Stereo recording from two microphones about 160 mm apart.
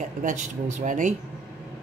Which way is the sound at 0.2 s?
55° right (ahead or behind).